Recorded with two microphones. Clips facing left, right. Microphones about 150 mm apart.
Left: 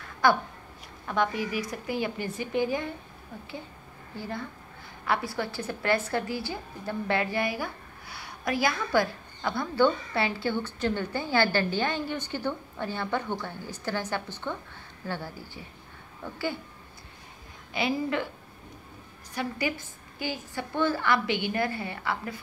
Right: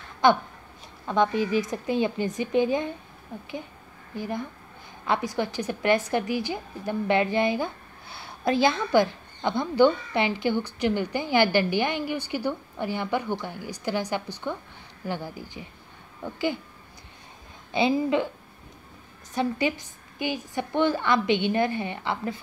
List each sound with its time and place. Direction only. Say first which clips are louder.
0.2 s a woman's voice: right 3 dB; 20° right (ahead or behind)
4.1 s a woman's voice: right 4 dB; 15° right (ahead or behind)
17.7 s a woman's voice: right 5 dB; 20° right (ahead or behind)
19.3 s a woman's voice: right 5 dB; 20° right (ahead or behind)